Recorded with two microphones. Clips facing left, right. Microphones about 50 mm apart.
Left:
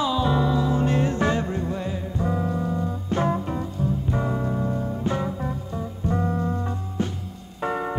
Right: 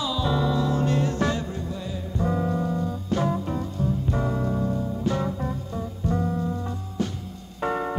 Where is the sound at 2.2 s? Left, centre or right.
Centre.